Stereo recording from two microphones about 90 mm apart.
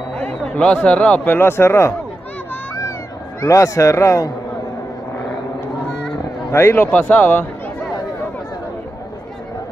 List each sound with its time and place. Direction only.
0.1 s speech: 20° left (ahead or behind)
3.3 s a man's voice: 35° left (ahead or behind)
6.5 s a man's voice: 25° left (ahead or behind)